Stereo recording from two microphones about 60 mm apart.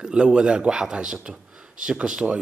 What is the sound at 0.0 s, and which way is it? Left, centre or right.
Speech, centre.